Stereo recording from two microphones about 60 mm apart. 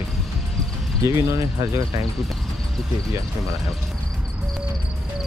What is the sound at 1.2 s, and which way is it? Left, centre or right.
Speech, right.